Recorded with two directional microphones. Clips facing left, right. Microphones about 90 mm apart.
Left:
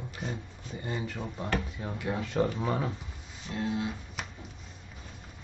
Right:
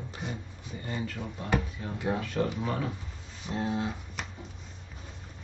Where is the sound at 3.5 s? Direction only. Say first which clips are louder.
Right 1 dB; 30° right (ahead or behind).